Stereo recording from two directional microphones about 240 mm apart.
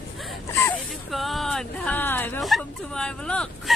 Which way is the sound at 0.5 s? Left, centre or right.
Centre.